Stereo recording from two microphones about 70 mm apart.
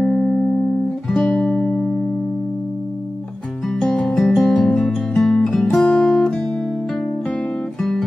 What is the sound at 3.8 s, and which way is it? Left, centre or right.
Music, centre.